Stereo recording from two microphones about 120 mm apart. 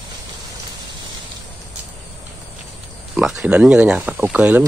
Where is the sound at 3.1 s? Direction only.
10° right (ahead or behind).